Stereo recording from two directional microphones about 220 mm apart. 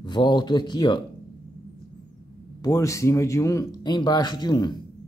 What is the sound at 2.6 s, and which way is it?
Speech, 15° left (ahead or behind).